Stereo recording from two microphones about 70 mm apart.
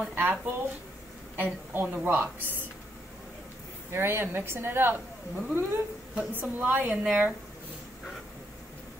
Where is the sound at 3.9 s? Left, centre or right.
Right.